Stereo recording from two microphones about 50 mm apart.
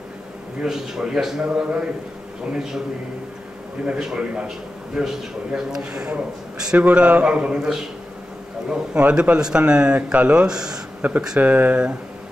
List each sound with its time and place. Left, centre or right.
0.6 s a man's voice: centre
3.8 s a man's voice: centre
11.0 s speech: right